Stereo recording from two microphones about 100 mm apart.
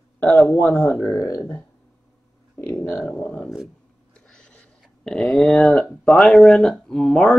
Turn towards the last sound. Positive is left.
turn(degrees=5)  # may be behind; listen again after turning